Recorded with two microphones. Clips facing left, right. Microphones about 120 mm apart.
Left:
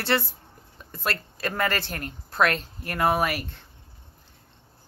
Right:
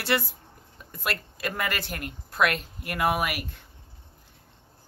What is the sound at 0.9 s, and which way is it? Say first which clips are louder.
Speech: left 2 dB; 35° left (ahead or behind).